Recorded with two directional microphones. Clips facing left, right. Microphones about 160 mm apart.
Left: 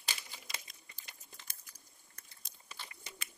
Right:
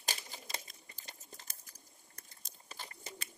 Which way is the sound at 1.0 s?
40° right (ahead or behind).